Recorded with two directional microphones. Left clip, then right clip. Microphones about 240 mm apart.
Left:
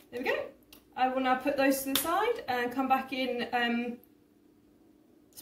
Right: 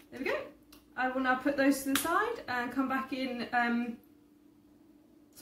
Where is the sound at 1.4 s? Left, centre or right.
Centre.